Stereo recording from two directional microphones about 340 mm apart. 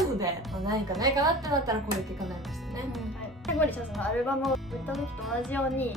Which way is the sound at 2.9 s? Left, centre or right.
Centre.